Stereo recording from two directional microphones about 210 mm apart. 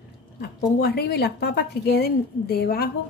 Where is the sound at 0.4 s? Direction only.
50° left (ahead or behind).